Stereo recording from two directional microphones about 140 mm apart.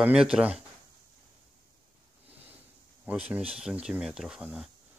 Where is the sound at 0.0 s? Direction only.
5° right (ahead or behind).